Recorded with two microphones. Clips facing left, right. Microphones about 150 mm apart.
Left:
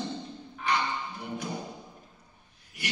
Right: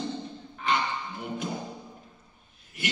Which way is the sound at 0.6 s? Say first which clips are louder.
Right 1 dB; 20° right (ahead or behind).